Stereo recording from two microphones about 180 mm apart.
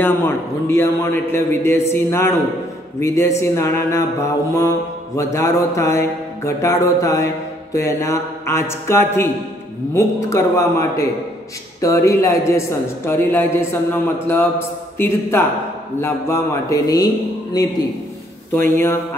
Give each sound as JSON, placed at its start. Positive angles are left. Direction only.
{"t": 0.0, "sound": "mantra", "side_deg": 10}
{"t": 17.6, "sound": "a man's voice", "side_deg": 20}
{"t": 18.5, "sound": "mantra", "side_deg": 15}